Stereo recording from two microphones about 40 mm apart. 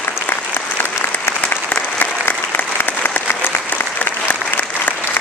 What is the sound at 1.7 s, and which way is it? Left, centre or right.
Applause, left.